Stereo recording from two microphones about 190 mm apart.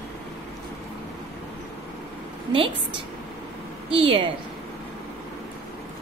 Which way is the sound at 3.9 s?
30° right (ahead or behind).